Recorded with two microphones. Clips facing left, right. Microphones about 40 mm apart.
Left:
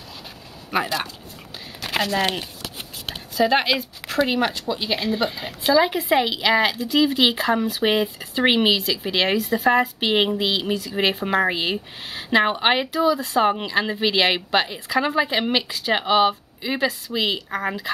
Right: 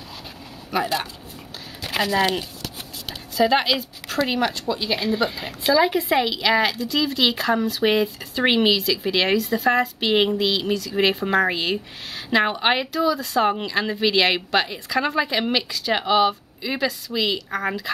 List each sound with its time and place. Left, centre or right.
0.7 s speech: centre
2.0 s speech: centre
3.3 s a woman's voice: centre
4.9 s a woman's voice: centre